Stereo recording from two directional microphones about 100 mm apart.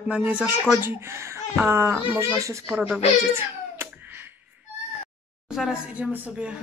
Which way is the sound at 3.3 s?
25° right (ahead or behind).